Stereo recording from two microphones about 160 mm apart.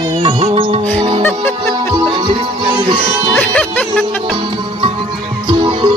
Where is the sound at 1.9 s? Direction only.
30° right (ahead or behind).